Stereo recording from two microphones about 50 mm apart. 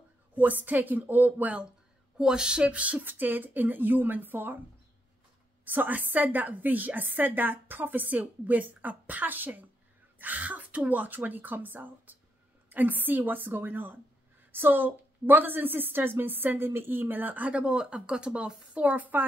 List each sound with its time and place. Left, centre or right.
0.3 s a woman's voice: right
2.1 s a sound: centre
3.0 s a woman's voice: right
5.7 s a woman's voice: right